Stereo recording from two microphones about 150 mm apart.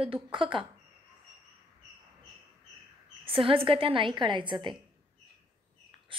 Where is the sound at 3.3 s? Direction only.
35° right (ahead or behind).